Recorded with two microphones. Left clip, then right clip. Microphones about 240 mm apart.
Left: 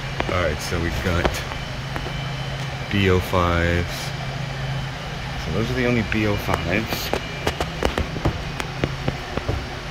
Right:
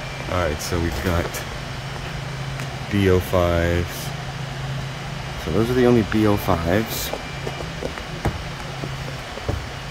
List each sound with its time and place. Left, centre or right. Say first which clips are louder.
0.4 s speech: right 4 dB; centre
2.9 s speech: right 1 dB; centre
5.8 s speech: right 4 dB; right